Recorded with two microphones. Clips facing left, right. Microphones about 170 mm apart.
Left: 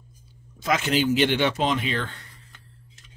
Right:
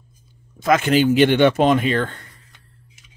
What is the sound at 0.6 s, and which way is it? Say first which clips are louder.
Speech: right 7 dB; 55° right (ahead or behind).